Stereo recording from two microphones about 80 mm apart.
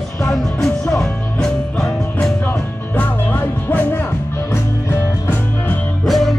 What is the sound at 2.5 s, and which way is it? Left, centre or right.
Music, left.